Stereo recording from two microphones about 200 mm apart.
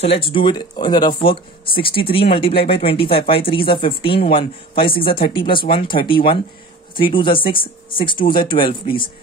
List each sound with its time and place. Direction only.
0.0 s speech: 25° left (ahead or behind)